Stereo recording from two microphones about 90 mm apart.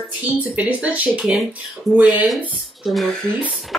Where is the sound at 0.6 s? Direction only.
15° right (ahead or behind).